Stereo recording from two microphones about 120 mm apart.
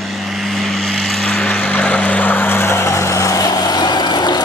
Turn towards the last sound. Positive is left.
turn(degrees=35)  # may be behind; listen again after turning